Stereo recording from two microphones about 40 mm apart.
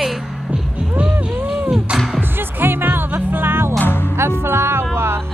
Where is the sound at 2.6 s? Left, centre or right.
Right.